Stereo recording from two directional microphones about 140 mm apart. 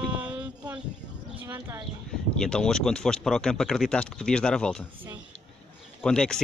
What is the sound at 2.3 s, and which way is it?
Speech, 5° left (ahead or behind).